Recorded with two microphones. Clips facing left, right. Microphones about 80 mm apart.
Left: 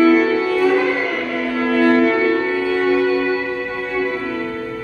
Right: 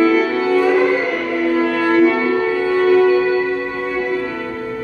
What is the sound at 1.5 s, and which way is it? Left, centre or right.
Music, centre.